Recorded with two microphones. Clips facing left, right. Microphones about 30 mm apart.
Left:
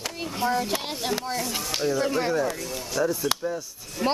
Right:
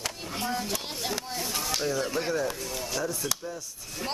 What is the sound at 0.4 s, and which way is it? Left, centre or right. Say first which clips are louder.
Speech: left 6 dB; centre.